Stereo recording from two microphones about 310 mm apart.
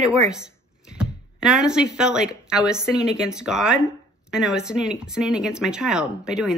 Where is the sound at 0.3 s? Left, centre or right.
Centre.